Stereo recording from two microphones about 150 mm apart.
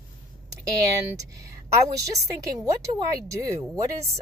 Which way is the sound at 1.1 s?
20° right (ahead or behind).